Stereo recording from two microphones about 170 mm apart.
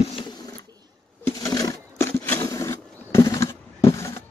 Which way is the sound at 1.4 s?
20° left (ahead or behind).